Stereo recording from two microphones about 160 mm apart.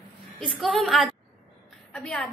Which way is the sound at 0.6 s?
Centre (ahead or behind).